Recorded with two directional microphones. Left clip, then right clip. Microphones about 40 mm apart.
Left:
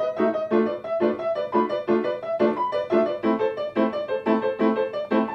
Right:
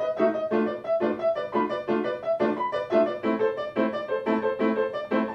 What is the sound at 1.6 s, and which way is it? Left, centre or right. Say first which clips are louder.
Music: left 4 dB; centre.